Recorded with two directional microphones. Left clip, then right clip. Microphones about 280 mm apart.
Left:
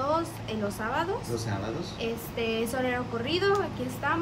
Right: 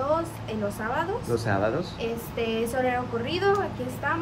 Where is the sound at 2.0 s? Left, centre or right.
Centre.